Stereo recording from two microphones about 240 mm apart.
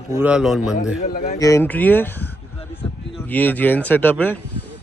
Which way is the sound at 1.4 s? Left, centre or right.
Centre.